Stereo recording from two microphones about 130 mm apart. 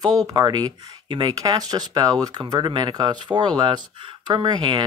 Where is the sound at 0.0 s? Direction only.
30° right (ahead or behind).